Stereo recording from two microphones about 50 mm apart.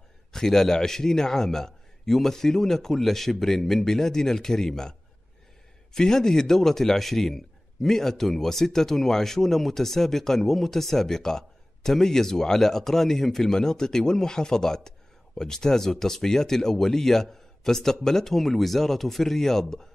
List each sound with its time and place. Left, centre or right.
0.3 s a man's voice: centre
5.9 s a man's voice: centre